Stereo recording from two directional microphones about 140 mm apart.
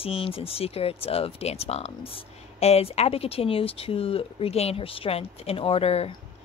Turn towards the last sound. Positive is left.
turn(degrees=45)  # may be behind; listen again after turning